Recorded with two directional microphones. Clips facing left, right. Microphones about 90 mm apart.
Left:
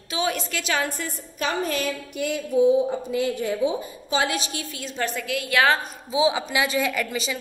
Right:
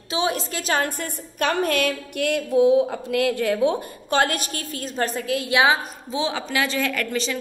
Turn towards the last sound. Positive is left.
turn(degrees=5)  # may be behind; listen again after turning